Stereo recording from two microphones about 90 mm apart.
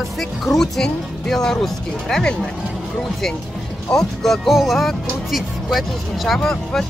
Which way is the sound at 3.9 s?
5° left (ahead or behind).